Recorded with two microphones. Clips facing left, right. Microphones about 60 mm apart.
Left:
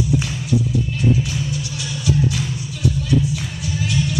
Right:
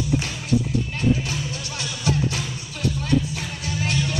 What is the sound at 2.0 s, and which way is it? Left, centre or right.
Music, right.